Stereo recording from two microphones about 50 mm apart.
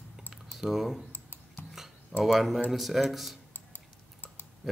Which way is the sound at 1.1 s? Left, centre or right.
Left.